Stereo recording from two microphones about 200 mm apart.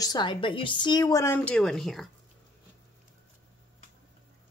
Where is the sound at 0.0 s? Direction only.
20° left (ahead or behind); by 2.0 s centre (ahead or behind).